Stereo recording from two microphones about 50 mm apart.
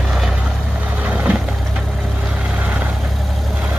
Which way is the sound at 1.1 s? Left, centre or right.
Right.